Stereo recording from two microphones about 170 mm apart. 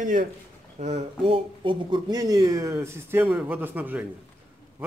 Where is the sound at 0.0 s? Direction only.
50° right (ahead or behind).